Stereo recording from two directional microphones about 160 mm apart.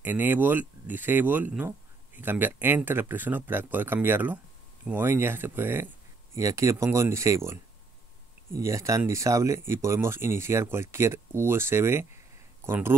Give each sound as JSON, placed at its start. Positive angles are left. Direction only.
{"t": 0.0, "sound": "speech", "side_deg": -10}
{"t": 8.5, "sound": "speech", "side_deg": -20}